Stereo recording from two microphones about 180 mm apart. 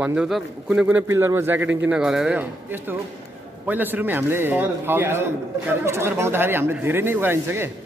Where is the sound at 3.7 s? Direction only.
10° right (ahead or behind).